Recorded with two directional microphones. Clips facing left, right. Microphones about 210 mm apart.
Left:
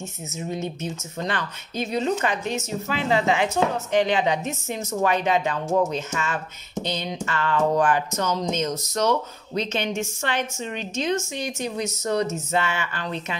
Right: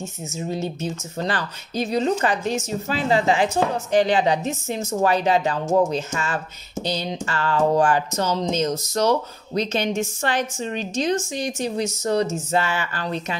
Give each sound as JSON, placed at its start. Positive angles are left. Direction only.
{"t": 0.4, "sound": "speech", "side_deg": -35}